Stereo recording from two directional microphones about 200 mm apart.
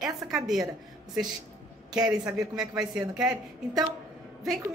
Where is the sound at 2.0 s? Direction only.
20° right (ahead or behind).